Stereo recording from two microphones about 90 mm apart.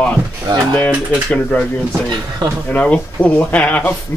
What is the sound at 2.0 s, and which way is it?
Speech, 50° right (ahead or behind).